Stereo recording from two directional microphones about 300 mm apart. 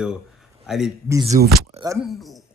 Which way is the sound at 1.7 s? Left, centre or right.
Centre.